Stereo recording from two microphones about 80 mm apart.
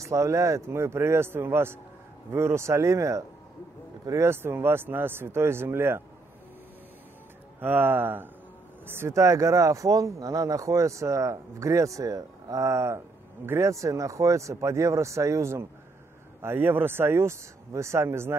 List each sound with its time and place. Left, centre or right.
0.0 s speech: right
4.3 s speech: right
7.6 s speech: right